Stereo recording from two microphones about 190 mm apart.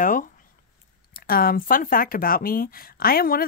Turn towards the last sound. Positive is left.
turn(degrees=50)  # may be behind; listen again after turning